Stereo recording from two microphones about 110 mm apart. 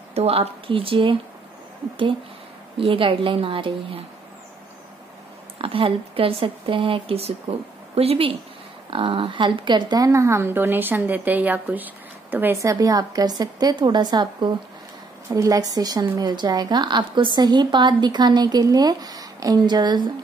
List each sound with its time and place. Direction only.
0.1 s speech: 65° right (ahead or behind)
2.8 s a woman's voice: 55° right (ahead or behind)
5.6 s a woman's voice: 55° right (ahead or behind)
8.9 s a woman's voice: 55° right (ahead or behind); by 12.5 s 15° right (ahead or behind)
12.6 s a woman's voice: 30° right (ahead or behind)
15.2 s a woman's voice: 30° right (ahead or behind)